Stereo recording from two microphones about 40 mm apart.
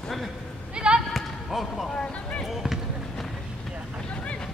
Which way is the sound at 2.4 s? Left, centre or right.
Centre.